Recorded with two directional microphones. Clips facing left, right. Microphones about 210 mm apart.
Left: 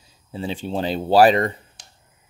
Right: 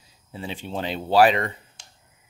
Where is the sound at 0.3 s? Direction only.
30° left (ahead or behind).